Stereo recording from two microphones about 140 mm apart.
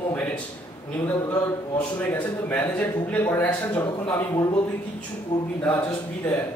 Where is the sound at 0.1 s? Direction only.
10° left (ahead or behind).